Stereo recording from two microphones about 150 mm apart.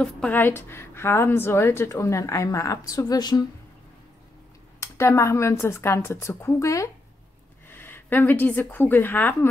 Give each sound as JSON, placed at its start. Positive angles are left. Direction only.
{"t": 0.0, "sound": "a woman's voice", "side_deg": 10}
{"t": 4.7, "sound": "speech", "side_deg": 20}